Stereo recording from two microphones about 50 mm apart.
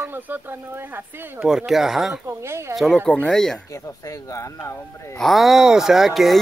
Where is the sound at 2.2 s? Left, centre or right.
Right.